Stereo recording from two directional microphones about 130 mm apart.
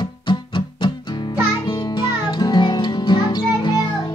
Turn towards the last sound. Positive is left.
turn(degrees=35)  # may be behind; listen again after turning